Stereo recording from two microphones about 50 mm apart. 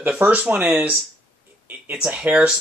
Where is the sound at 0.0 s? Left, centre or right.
Right.